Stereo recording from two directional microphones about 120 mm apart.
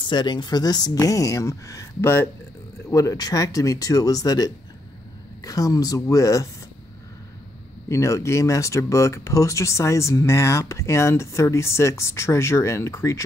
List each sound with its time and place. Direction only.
0.0 s speech: 40° left (ahead or behind)
7.9 s speech: 25° left (ahead or behind)